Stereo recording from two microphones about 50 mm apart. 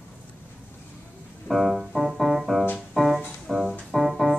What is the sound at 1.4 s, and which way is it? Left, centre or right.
Music, centre.